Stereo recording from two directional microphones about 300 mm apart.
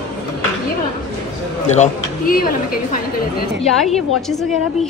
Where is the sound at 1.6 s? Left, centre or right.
Left.